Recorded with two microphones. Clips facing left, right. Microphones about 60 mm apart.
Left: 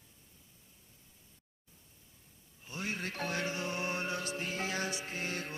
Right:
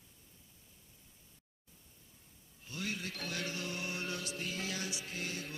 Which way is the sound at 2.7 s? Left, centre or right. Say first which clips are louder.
Left 2 dB; left.